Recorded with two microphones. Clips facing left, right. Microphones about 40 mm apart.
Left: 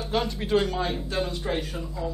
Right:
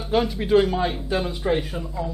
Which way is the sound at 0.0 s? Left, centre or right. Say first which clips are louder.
Right 5 dB; centre.